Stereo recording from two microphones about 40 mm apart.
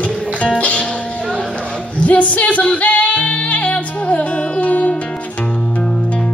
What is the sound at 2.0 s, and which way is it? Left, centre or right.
Music, left.